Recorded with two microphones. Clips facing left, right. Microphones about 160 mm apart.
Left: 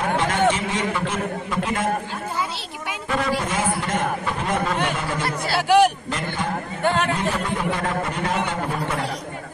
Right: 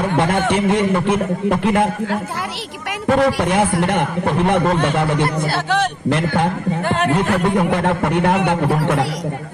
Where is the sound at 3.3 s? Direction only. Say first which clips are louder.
Right 6 dB; 70° right (ahead or behind).